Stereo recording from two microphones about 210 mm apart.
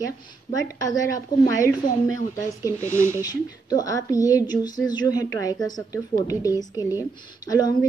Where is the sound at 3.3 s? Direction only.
15° left (ahead or behind).